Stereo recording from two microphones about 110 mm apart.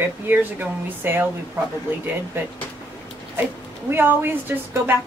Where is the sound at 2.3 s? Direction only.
20° right (ahead or behind).